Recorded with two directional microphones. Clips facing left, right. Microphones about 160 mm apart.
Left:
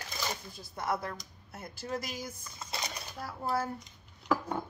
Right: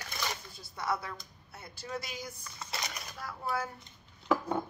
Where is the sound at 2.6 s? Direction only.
25° left (ahead or behind).